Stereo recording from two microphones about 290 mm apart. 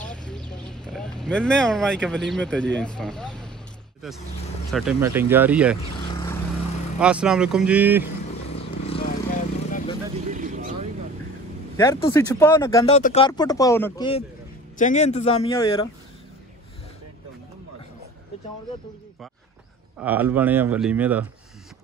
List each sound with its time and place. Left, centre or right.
0.0 s a sound: centre
4.7 s speech: centre
6.0 s vehicle: centre
7.0 s speech: centre
8.8 s vehicle: left
10.3 s vehicle: right
11.7 s speech: centre
12.8 s speech: left
20.0 s speech: centre